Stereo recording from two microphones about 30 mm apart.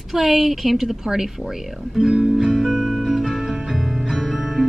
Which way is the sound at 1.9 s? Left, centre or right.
Right.